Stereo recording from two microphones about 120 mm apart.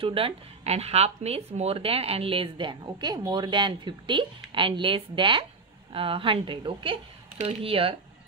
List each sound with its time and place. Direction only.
0.0 s speech: 50° right (ahead or behind)